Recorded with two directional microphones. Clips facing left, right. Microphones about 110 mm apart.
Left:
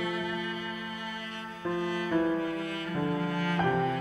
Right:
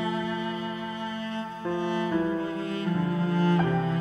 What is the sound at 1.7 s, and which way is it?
Music, 25° right (ahead or behind).